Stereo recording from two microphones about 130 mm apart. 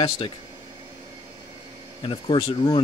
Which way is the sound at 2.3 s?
35° left (ahead or behind).